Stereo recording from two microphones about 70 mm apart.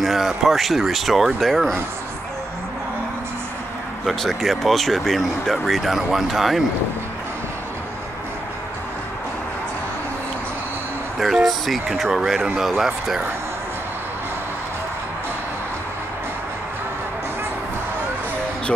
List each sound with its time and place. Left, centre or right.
0.0 s speech: centre
4.0 s speech: centre
11.1 s a sound: centre
12.0 s speech: centre